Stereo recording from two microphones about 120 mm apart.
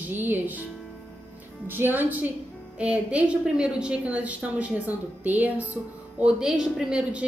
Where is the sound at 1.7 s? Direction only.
15° right (ahead or behind).